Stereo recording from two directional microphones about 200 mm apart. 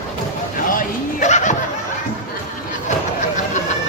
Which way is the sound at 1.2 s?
35° left (ahead or behind).